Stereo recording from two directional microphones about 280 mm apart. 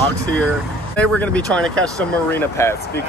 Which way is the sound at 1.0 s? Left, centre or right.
Centre.